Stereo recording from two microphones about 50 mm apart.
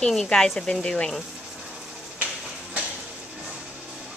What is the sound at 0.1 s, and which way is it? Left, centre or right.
Speech, centre.